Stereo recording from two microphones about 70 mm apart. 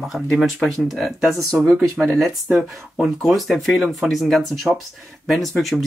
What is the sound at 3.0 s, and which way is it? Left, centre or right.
Speech, centre.